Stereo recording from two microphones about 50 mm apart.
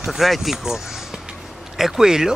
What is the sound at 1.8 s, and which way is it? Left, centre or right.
Speech, centre.